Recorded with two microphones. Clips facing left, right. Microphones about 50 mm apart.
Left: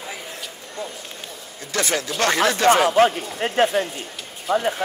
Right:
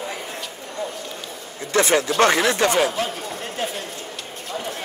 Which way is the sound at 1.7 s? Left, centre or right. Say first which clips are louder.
Right 5 dB; right.